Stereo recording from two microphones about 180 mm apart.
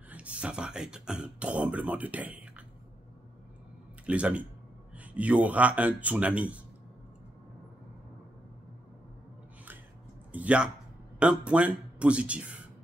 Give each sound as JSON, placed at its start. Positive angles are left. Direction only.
{"t": 0.1, "sound": "a sound", "side_deg": -5}
{"t": 4.0, "sound": "speech", "side_deg": -5}
{"t": 10.3, "sound": "speech", "side_deg": -5}